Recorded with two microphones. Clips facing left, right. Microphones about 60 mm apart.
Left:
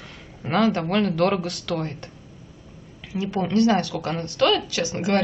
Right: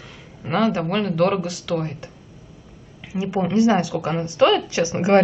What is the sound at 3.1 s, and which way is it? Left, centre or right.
A woman's voice, centre.